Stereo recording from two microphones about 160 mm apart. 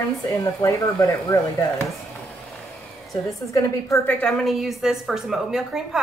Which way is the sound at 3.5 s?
15° left (ahead or behind).